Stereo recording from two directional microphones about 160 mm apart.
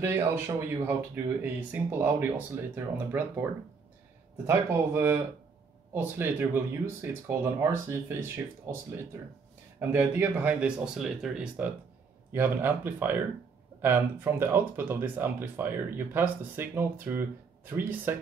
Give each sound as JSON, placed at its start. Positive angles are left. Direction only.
{"t": 0.0, "sound": "speech", "side_deg": -15}
{"t": 4.5, "sound": "speech", "side_deg": -15}